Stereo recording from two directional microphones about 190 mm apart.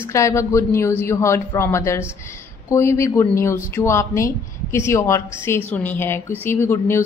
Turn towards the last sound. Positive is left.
turn(degrees=15)  # may be behind; listen again after turning